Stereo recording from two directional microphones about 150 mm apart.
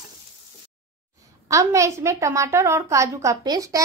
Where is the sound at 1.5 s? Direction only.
20° right (ahead or behind).